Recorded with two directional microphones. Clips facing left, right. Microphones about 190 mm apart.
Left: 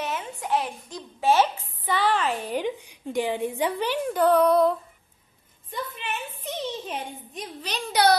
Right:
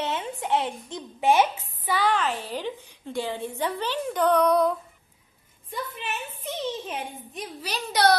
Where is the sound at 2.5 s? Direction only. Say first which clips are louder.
Left 4 dB; 15° left (ahead or behind).